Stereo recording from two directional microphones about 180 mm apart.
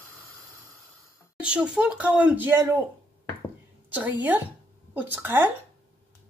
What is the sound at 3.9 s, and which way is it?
Speech, 10° right (ahead or behind).